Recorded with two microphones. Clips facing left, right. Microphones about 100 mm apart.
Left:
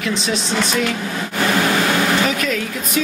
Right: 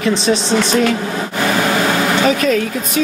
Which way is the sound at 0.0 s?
30° right (ahead or behind).